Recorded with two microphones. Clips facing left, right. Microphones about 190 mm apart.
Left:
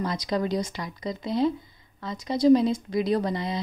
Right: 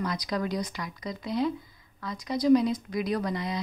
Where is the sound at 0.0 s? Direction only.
25° left (ahead or behind).